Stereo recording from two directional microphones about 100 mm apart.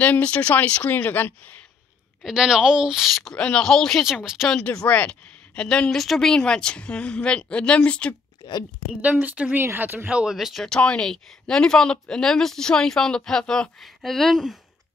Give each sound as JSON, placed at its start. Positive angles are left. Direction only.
{"t": 0.0, "sound": "a woman's voice", "side_deg": 15}
{"t": 2.2, "sound": "speech", "side_deg": -5}
{"t": 4.0, "sound": "speech", "side_deg": -5}
{"t": 4.5, "sound": "a woman's voice", "side_deg": 10}
{"t": 9.0, "sound": "speech", "side_deg": -15}
{"t": 10.3, "sound": "speech", "side_deg": 0}